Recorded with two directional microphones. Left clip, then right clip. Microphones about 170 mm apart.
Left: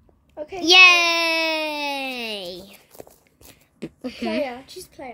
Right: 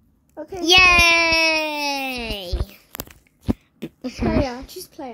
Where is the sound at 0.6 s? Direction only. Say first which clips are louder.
Left 1 dB; centre (ahead or behind).